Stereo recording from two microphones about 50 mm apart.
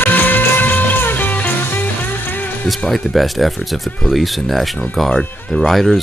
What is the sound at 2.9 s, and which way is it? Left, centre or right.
Speech, centre.